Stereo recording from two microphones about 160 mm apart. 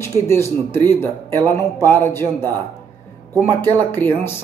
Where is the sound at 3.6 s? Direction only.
15° left (ahead or behind).